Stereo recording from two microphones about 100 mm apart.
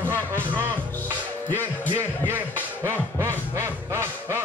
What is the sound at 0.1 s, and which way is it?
Music, 25° right (ahead or behind).